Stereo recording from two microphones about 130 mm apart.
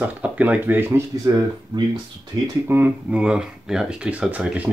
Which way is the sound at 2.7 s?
10° right (ahead or behind).